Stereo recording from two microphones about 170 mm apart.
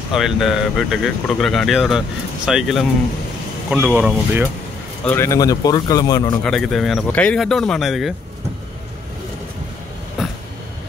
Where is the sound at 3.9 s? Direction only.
10° right (ahead or behind).